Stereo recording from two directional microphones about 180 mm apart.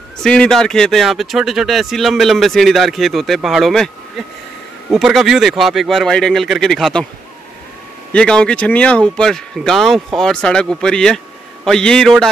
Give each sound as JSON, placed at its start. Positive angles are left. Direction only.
{"t": 0.2, "sound": "speech", "side_deg": 5}
{"t": 4.9, "sound": "speech", "side_deg": 0}
{"t": 8.1, "sound": "speech", "side_deg": 5}